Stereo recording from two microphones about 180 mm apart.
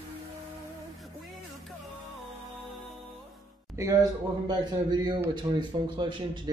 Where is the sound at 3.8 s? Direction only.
15° right (ahead or behind).